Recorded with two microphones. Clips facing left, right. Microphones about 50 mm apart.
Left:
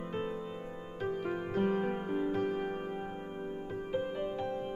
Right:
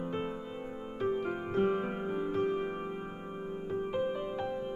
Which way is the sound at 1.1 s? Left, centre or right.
Right.